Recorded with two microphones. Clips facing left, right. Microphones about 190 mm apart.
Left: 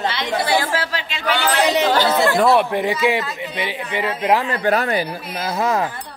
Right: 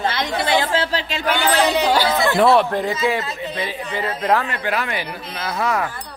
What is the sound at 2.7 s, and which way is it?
Speech, 15° left (ahead or behind).